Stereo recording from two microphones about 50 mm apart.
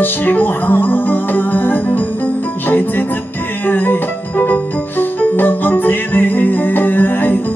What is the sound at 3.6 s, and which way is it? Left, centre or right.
Music, left.